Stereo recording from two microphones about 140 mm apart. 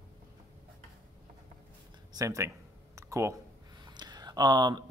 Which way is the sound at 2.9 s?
20° right (ahead or behind).